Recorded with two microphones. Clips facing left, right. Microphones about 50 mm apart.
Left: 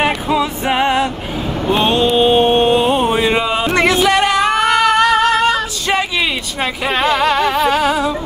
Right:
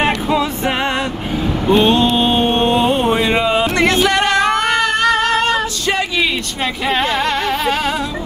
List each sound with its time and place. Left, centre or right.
0.0 s music: centre
1.7 s mantra: centre
3.8 s music: centre
4.9 s a sound: centre
5.9 s a sound: centre
6.6 s speech: centre